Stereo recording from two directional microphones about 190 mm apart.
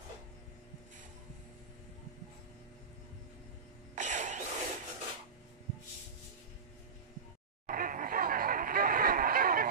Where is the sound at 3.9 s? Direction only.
40° right (ahead or behind).